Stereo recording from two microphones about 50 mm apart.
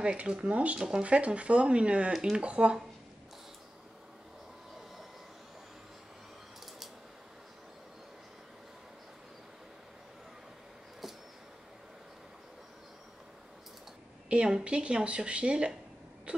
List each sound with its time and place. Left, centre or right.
0.3 s a woman's voice: right
0.7 s speech: centre
1.0 s a woman's voice: right
14.3 s a woman's voice: centre
16.3 s a sound: right